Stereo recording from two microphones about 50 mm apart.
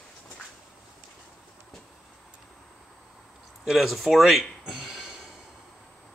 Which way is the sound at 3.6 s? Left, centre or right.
Centre.